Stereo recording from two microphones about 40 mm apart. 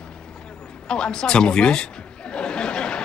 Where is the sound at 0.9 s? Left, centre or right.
Left.